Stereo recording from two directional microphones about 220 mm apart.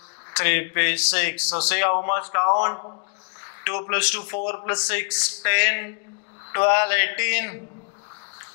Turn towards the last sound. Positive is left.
turn(degrees=15)  # may be behind; listen again after turning